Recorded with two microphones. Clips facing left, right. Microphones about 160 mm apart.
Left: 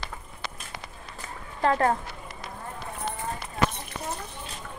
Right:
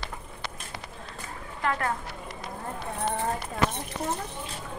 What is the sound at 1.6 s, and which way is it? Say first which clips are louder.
Speech: left 6 dB; 35° left (ahead or behind).